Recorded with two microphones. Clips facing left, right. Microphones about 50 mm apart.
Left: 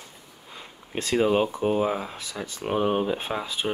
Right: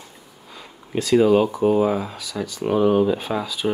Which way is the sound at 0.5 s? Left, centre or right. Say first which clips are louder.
Right 6 dB; left.